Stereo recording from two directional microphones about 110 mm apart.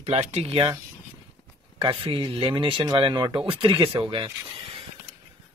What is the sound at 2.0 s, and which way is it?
Speech, 50° right (ahead or behind).